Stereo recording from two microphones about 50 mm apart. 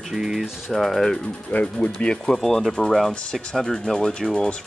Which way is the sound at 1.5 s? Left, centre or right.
Left.